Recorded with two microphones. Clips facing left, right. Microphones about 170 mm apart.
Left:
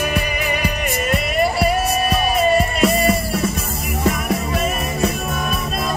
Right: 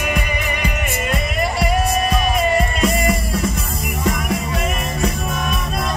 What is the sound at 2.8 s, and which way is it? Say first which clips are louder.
Music: left 2 dB; 30° left (ahead or behind).